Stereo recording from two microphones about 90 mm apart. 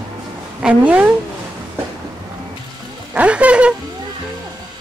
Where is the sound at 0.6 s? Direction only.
15° right (ahead or behind).